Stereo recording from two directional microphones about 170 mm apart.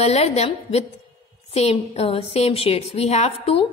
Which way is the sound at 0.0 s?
40° left (ahead or behind).